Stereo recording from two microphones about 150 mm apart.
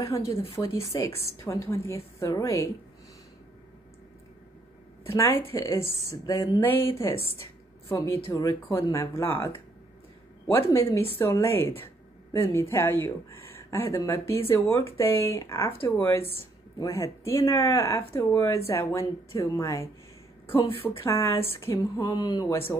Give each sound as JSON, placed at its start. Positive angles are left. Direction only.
{"t": 0.0, "sound": "speech", "side_deg": 20}
{"t": 5.0, "sound": "speech", "side_deg": 15}
{"t": 7.9, "sound": "speech", "side_deg": 20}
{"t": 10.5, "sound": "a woman's voice", "side_deg": 20}